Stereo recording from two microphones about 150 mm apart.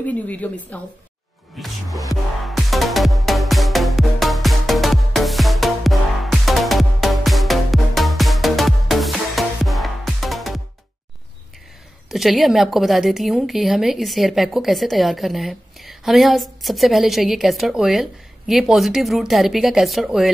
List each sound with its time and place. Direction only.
0.0 s a woman's voice: 10° left (ahead or behind)
1.6 s music: centre (ahead or behind)
12.1 s a woman's voice: centre (ahead or behind)